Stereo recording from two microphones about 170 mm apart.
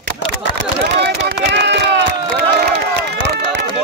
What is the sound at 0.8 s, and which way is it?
Speech, 90° right.